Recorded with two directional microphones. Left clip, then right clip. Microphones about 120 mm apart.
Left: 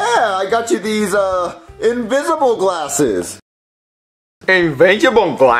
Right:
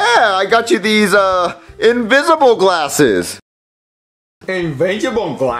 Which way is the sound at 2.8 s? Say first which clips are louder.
Right 4 dB; 5° left (ahead or behind).